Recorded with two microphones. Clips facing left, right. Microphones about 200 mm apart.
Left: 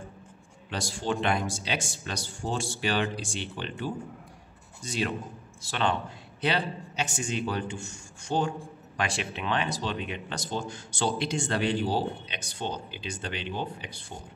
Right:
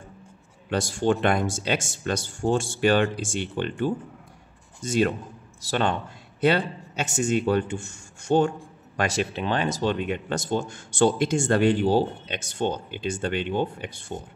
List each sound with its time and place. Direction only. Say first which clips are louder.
0.7 s speech: right 8 dB; 55° right (ahead or behind)